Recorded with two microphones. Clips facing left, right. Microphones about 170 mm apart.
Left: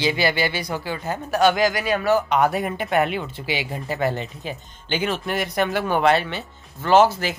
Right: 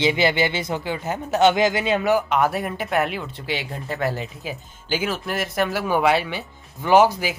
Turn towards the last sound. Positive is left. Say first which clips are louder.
# even
turn(degrees=-10)  # may be behind; listen again after turning